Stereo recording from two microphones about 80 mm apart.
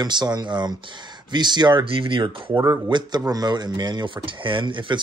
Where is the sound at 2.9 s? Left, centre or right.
Right.